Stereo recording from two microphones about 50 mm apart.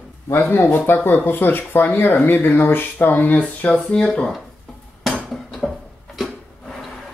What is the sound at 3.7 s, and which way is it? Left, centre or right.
Speech, centre.